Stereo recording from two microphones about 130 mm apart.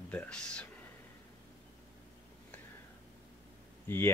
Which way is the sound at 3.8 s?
20° left (ahead or behind).